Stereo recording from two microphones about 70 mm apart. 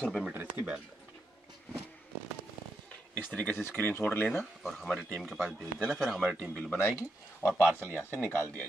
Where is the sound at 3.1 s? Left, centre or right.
Left.